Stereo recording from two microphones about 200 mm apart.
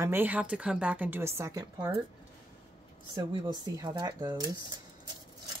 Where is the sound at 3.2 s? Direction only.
20° right (ahead or behind).